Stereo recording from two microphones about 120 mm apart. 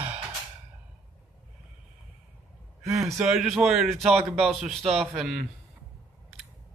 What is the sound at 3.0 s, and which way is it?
Speech, 5° right (ahead or behind).